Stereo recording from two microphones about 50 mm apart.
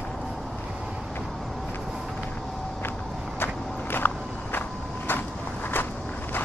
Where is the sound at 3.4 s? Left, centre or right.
Left.